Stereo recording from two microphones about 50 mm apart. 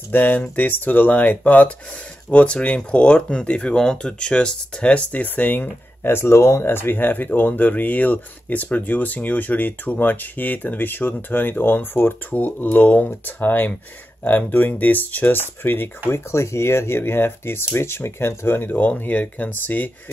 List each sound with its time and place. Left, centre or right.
0.1 s speech: left
2.3 s speech: left
6.0 s speech: left
12.3 s speech: left
16.1 s speech: left